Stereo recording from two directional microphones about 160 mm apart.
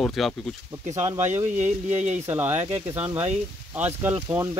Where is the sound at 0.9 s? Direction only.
20° right (ahead or behind).